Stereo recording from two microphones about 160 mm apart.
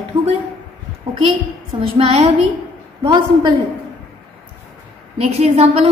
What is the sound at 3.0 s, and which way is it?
Speech, 25° right (ahead or behind).